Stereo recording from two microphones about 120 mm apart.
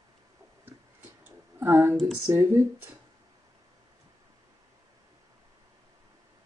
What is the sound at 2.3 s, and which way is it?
Speech, 20° right (ahead or behind).